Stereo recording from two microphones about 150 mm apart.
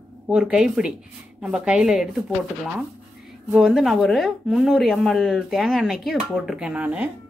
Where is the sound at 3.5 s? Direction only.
Centre (ahead or behind).